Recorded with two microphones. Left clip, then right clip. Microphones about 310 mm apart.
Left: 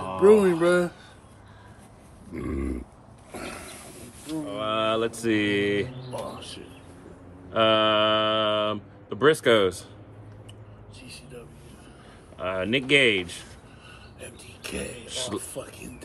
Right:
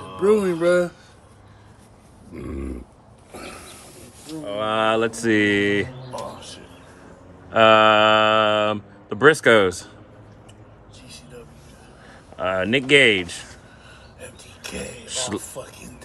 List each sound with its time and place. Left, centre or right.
0.2 s speech: centre
2.3 s grunt: centre
3.3 s roaring cats: centre
4.6 s mantra: right
7.5 s speech: right
12.4 s speech: centre
14.2 s a sound: centre
15.0 s speech: centre